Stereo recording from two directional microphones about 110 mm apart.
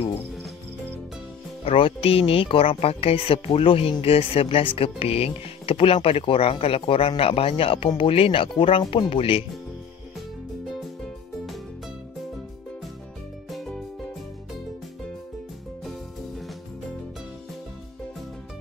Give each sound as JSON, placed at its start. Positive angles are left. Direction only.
{"t": 1.6, "sound": "speech", "side_deg": 60}
{"t": 13.5, "sound": "music", "side_deg": 0}